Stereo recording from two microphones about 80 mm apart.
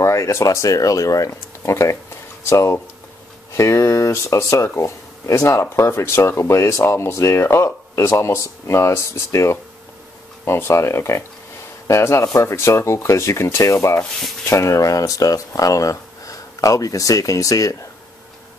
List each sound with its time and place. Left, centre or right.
0.0 s speech: left